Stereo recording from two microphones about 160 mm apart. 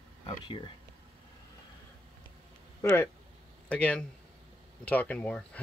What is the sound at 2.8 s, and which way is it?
Speech, 15° left (ahead or behind).